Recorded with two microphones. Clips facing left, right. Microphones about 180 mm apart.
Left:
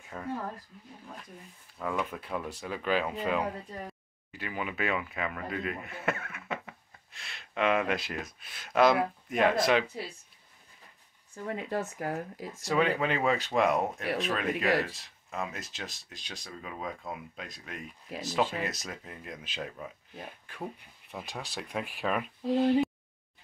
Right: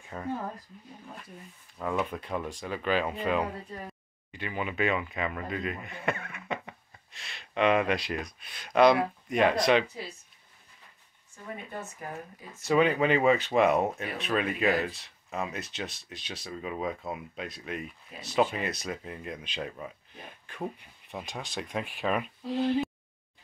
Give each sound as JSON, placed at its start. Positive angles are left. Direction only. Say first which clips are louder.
{"t": 0.1, "sound": "speech", "louder": "right 2 dB", "side_deg": -10}
{"t": 1.8, "sound": "speech", "louder": "right 2 dB", "side_deg": -5}
{"t": 2.1, "sound": "speech", "louder": "right 2 dB", "side_deg": 5}
{"t": 11.4, "sound": "speech", "louder": "left 6 dB", "side_deg": 90}
{"t": 12.6, "sound": "speech", "louder": "right 4 dB", "side_deg": 0}
{"t": 21.1, "sound": "speech", "louder": "right 2 dB", "side_deg": 0}